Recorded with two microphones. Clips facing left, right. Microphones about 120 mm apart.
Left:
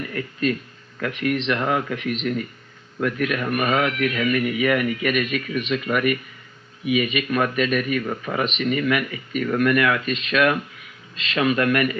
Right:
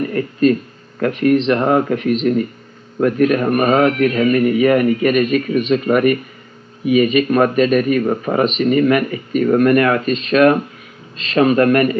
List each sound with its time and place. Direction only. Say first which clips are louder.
0.0 s speech: right 10 dB; 40° right (ahead or behind)